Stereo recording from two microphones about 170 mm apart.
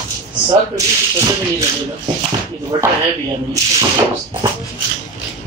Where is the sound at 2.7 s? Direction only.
30° right (ahead or behind).